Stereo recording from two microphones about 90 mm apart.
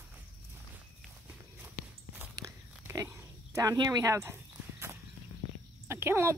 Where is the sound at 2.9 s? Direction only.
35° right (ahead or behind).